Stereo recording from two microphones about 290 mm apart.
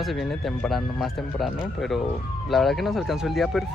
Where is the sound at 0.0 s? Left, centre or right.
Centre.